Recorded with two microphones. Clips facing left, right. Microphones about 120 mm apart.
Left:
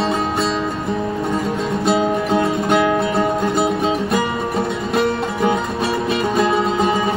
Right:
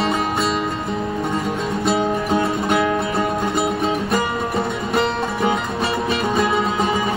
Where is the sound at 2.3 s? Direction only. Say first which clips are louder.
Left 2 dB; 25° left (ahead or behind).